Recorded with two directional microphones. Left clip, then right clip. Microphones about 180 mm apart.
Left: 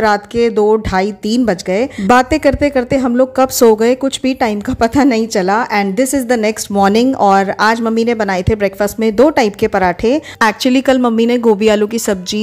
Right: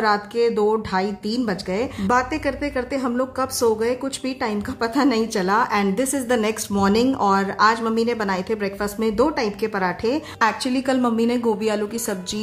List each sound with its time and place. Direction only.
0.0 s speech: 35° left (ahead or behind)